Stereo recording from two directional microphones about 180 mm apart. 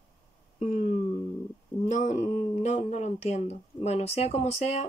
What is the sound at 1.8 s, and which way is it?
Speech, 45° left (ahead or behind).